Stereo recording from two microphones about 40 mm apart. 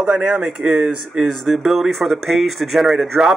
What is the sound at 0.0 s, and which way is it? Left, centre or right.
Speech, centre.